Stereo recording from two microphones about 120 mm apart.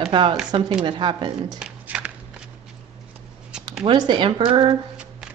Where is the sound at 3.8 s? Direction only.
40° right (ahead or behind).